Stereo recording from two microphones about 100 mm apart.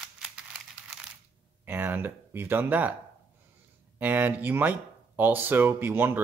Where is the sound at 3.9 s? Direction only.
15° right (ahead or behind).